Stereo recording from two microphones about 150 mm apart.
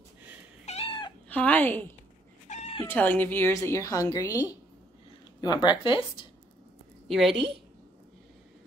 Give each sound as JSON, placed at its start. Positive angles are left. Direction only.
{"t": 0.7, "sound": "cat", "side_deg": 40}
{"t": 1.3, "sound": "speech", "side_deg": 10}
{"t": 2.4, "sound": "cat", "side_deg": 50}
{"t": 2.8, "sound": "a woman's voice", "side_deg": 15}
{"t": 7.1, "sound": "a woman's voice", "side_deg": 0}